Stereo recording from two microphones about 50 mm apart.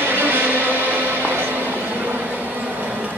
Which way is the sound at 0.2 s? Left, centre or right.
Right.